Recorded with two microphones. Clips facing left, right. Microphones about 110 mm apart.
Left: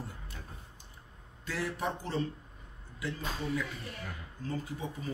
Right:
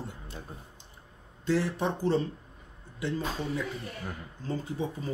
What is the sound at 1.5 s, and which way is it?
Speech, 25° right (ahead or behind).